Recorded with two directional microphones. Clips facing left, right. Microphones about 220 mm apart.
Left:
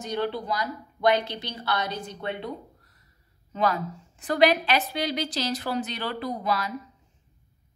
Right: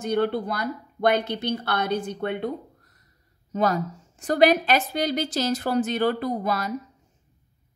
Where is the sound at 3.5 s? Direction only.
45° right (ahead or behind).